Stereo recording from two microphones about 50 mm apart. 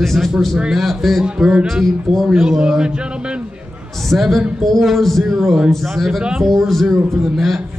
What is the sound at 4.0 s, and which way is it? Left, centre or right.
A man's voice, centre.